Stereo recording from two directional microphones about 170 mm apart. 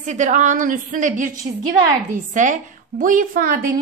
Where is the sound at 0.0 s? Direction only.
45° right (ahead or behind).